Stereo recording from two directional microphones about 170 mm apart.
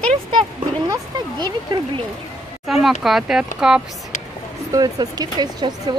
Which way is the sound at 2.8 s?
Centre (ahead or behind).